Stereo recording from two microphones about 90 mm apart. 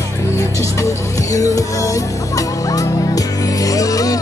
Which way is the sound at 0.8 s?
35° left (ahead or behind).